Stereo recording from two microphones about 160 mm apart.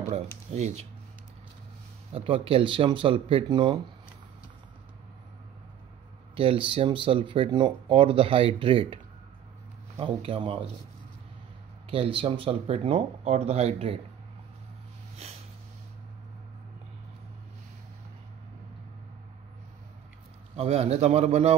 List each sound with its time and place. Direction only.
0.5 s speech: 45° right (ahead or behind)
2.1 s speech: 35° right (ahead or behind)
6.3 s speech: 35° right (ahead or behind)
11.9 s speech: 35° right (ahead or behind)
20.5 s speech: 40° right (ahead or behind)